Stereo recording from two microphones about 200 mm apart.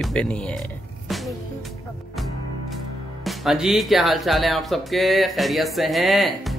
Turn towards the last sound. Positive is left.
turn(degrees=0)  # may be behind; listen again after turning